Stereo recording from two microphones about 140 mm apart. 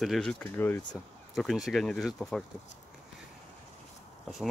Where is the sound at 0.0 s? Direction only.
Centre (ahead or behind).